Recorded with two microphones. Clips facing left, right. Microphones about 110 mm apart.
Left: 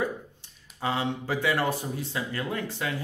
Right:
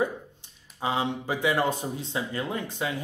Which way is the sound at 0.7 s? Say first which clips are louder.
Right 1 dB; 20° right (ahead or behind).